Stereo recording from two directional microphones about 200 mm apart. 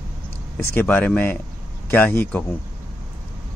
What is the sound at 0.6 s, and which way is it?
Speech, 10° left (ahead or behind).